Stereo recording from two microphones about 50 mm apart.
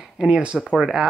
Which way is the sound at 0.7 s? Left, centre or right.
Centre.